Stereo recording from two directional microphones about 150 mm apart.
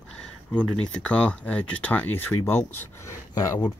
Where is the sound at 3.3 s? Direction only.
25° left (ahead or behind).